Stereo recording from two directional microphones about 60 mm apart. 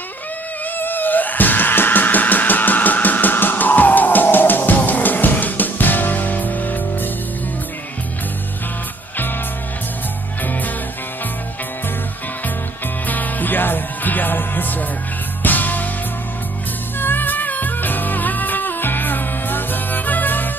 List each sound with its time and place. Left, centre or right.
0.7 s music: left
10.4 s music: left
13.0 s music: left
17.0 s music: left